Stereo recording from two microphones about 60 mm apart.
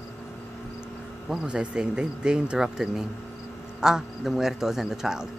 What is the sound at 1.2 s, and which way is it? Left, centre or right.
Speech, centre.